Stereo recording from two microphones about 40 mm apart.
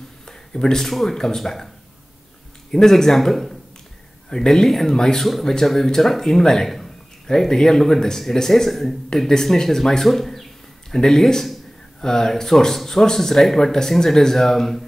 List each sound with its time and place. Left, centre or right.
0.2 s a sound: centre
0.8 s speech: centre
2.7 s speech: centre